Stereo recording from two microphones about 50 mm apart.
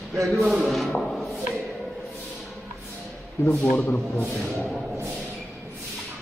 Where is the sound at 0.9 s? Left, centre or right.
Centre.